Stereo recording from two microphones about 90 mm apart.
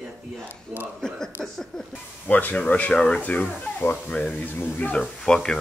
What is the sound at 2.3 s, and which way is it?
Speech, 20° left (ahead or behind).